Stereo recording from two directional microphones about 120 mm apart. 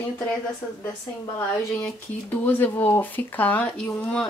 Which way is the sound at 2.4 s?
15° left (ahead or behind).